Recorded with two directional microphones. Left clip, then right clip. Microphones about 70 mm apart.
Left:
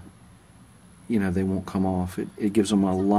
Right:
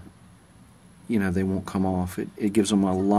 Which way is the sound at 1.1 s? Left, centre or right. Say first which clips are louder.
Even; right.